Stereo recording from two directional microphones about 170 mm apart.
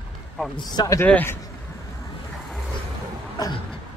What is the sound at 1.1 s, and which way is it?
Speech, 10° left (ahead or behind).